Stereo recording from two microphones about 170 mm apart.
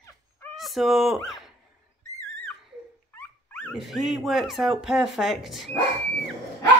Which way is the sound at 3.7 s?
Centre (ahead or behind).